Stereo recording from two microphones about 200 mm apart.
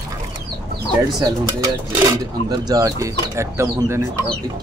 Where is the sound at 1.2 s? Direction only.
20° right (ahead or behind).